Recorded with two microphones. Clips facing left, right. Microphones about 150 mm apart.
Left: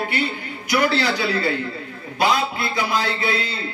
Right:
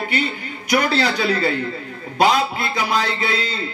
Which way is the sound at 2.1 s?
20° right (ahead or behind).